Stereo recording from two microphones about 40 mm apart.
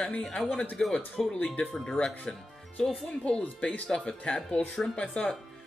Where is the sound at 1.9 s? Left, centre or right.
Left.